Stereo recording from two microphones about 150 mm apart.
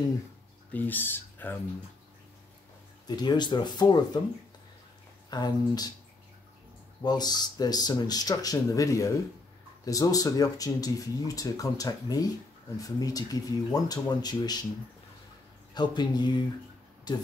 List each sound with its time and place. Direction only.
0.7 s speech: 10° left (ahead or behind)
3.1 s speech: 30° left (ahead or behind)
5.3 s speech: 25° left (ahead or behind)
7.0 s speech: 30° left (ahead or behind)
15.7 s speech: 30° left (ahead or behind)